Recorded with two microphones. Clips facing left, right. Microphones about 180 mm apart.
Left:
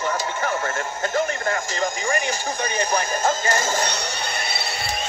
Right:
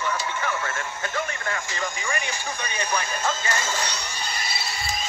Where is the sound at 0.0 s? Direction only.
45° left (ahead or behind).